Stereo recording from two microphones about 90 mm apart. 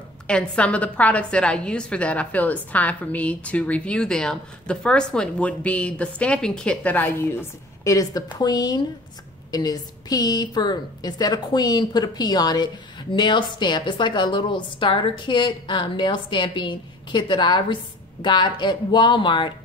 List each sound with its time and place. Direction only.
0.3 s a woman's voice: 10° left (ahead or behind)
7.8 s a woman's voice: 40° left (ahead or behind); by 19.5 s 60° left (ahead or behind)